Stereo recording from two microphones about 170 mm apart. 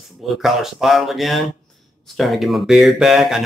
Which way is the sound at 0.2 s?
Centre (ahead or behind).